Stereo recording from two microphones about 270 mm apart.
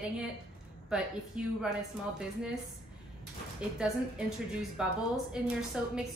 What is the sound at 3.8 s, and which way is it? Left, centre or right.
A woman's voice, centre.